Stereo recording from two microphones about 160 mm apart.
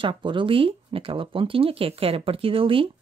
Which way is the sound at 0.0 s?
30° right (ahead or behind).